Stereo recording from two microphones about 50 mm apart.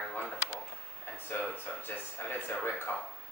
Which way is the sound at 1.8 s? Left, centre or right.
Left.